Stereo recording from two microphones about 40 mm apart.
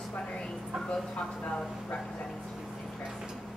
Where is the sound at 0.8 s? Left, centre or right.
Left.